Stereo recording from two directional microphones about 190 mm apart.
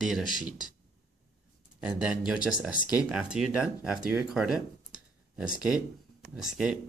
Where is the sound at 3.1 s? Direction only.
5° right (ahead or behind).